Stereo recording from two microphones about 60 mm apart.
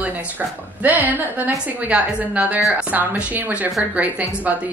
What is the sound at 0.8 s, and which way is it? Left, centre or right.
A woman's voice, right.